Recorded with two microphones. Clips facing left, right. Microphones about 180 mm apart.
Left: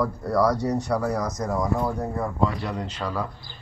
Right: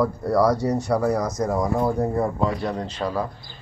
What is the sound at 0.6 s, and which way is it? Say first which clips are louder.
Speech: right 2 dB; 10° right (ahead or behind).